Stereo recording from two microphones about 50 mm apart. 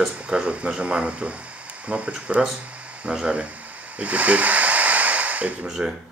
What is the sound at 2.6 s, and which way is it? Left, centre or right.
Hiss, right.